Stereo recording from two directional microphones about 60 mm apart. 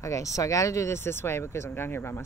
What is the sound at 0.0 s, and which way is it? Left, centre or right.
Speech, left.